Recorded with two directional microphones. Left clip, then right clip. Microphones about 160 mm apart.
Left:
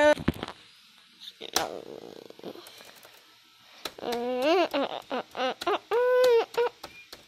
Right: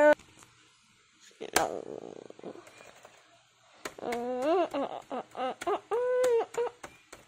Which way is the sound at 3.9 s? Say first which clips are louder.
Left 3 dB; centre (ahead or behind).